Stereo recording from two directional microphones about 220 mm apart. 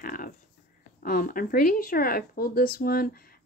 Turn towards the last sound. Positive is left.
turn(degrees=40)  # may be behind; listen again after turning